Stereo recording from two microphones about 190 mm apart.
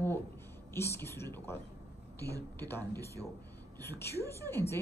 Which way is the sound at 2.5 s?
10° left (ahead or behind).